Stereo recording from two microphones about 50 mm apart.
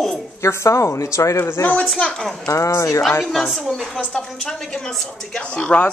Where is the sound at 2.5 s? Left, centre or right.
Left.